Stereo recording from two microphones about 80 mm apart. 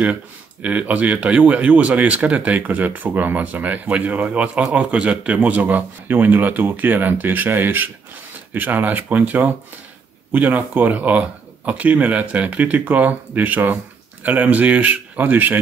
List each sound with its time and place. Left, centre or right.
0.0 s speech: centre